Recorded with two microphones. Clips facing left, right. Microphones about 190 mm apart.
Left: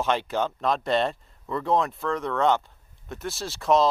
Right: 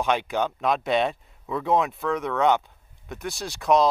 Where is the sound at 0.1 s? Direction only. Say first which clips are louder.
Right 1 dB; 15° right (ahead or behind).